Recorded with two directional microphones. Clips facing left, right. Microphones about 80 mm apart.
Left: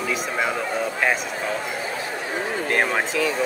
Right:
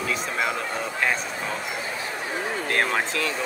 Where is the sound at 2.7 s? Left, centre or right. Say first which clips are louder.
Left 2 dB; centre.